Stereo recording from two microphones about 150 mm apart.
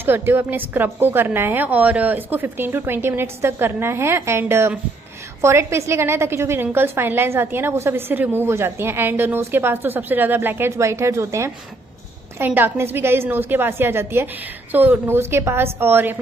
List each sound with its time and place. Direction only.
0.0 s a woman's voice: 15° right (ahead or behind)